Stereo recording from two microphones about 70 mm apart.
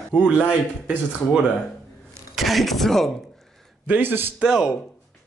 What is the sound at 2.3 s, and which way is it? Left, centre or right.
Speech, centre.